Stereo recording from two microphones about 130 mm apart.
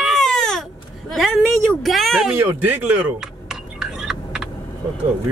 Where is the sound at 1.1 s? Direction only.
Centre (ahead or behind).